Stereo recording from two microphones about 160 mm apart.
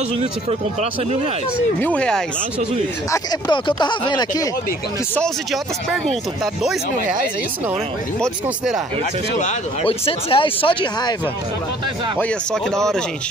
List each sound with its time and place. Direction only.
0.2 s speech: 45° right (ahead or behind)
1.8 s speech: 10° left (ahead or behind)
3.1 s speech: 25° left (ahead or behind)
5.1 s speech: centre (ahead or behind)
8.2 s speech: 5° right (ahead or behind)
9.8 s speech: 35° left (ahead or behind)
12.7 s speech: 5° left (ahead or behind)